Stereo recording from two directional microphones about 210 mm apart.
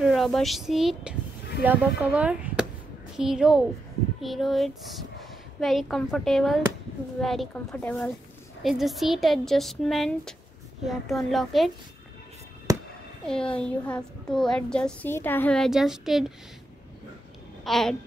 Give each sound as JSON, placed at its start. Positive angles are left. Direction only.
{"t": 0.0, "sound": "a child's voice", "side_deg": 0}
{"t": 12.7, "sound": "music", "side_deg": -15}
{"t": 13.3, "sound": "a child's voice", "side_deg": 5}
{"t": 17.6, "sound": "a child's voice", "side_deg": 0}